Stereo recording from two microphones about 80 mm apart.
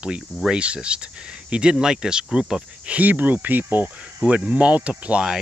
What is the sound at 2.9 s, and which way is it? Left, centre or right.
Speech, right.